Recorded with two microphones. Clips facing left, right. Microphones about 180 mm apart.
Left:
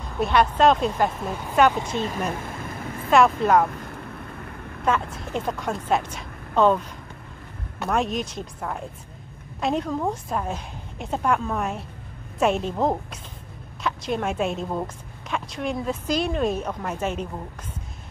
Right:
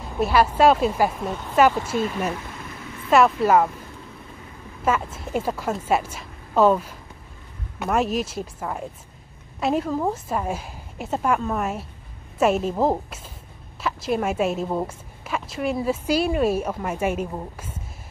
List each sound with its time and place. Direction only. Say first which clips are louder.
0.2 s a woman's voice: right 1 dB; 5° right (ahead or behind)
3.7 s a sound: left 4 dB; 65° left (ahead or behind)
4.8 s a woman's voice: right 1 dB; 5° right (ahead or behind)